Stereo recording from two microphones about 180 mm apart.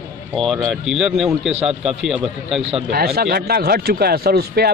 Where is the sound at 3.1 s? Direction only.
60° right (ahead or behind).